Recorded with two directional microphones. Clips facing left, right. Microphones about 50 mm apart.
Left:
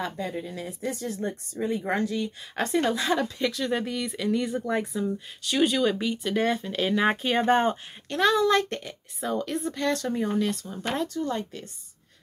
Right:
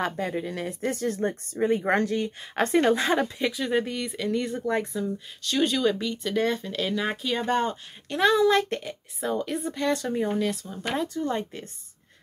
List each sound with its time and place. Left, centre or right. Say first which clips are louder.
0.2 s speech: right 3 dB; right
3.3 s speech: right 1 dB; centre
7.0 s speech: left 4 dB; left
8.1 s a child's voice: right 1 dB; centre
11.1 s speech: right 1 dB; right